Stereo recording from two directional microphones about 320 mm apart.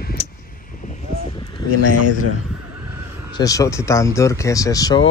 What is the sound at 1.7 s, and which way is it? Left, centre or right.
Speech, left.